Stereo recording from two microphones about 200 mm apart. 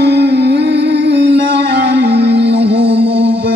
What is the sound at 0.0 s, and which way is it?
Music, 55° right (ahead or behind).